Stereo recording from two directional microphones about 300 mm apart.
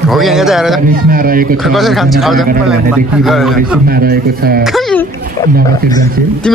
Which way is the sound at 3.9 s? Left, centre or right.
Right.